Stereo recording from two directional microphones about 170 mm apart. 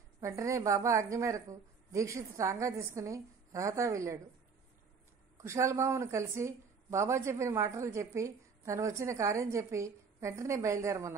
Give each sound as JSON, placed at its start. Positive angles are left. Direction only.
{"t": 0.2, "sound": "a woman's voice", "side_deg": -15}
{"t": 5.4, "sound": "a woman's voice", "side_deg": -15}